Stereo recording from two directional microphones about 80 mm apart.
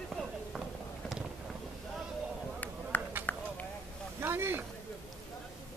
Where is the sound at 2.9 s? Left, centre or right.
Left.